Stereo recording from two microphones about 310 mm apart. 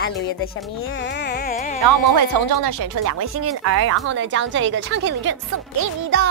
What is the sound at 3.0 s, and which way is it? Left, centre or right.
A woman's voice, right.